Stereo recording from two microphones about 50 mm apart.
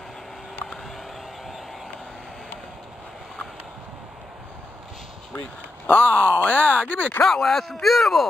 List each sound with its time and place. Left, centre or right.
5.9 s speech: left
7.2 s speech: centre